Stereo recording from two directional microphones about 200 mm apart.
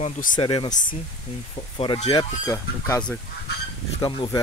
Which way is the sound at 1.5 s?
25° left (ahead or behind).